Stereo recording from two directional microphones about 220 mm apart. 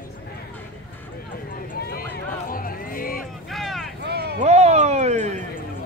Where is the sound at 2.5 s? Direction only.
40° left (ahead or behind).